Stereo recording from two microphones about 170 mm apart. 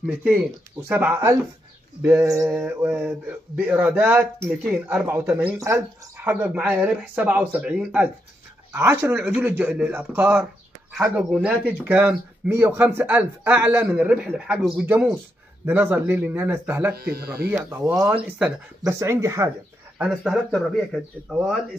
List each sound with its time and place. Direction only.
0.0 s speech: 5° right (ahead or behind)
16.9 s speech: 65° right (ahead or behind)
17.5 s speech: 10° right (ahead or behind)
20.0 s speech: centre (ahead or behind)